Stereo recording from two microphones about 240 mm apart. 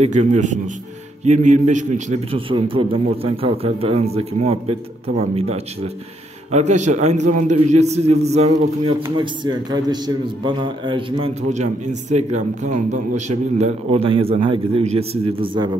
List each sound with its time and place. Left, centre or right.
0.0 s a man's voice: right